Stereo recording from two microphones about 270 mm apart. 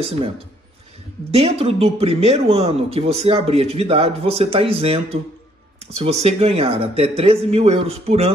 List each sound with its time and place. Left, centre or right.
1.3 s speech: right